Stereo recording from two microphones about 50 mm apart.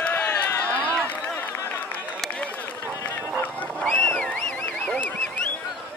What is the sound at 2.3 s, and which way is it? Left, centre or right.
Run, left.